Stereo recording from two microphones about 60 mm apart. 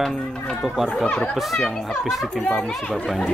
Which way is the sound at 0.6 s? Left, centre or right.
Centre.